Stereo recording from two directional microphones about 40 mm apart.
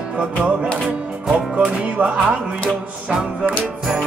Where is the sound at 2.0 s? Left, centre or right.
Right.